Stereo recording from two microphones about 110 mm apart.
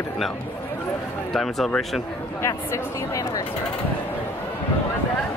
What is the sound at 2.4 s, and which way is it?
Speech, 30° left (ahead or behind).